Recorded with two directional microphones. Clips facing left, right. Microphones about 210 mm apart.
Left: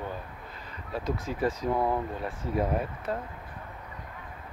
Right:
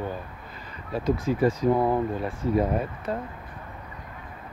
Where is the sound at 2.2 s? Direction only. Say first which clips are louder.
Right 5 dB; 5° left (ahead or behind).